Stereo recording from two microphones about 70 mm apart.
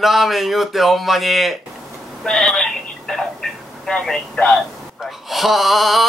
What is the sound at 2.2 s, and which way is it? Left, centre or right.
Telephone, centre.